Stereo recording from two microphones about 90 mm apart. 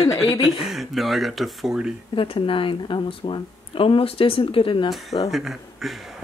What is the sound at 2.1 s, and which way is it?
Speech, 85° left.